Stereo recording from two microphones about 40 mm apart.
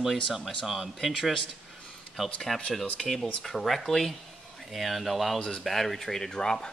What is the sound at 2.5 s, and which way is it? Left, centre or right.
Speech, centre.